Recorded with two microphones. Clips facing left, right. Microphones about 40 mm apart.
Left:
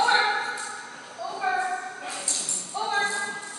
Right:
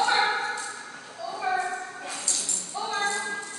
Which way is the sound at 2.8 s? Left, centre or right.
Centre.